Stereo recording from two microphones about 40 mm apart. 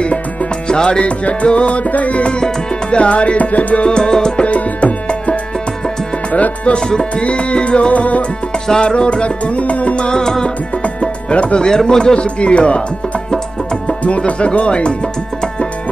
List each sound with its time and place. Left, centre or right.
0.7 s music: left
3.8 s music: left
4.5 s tabla: left
6.3 s music: left
6.9 s music: centre; by 10.0 s left
10.0 s music: centre
10.8 s music: left
11.6 s music: centre
14.0 s music: left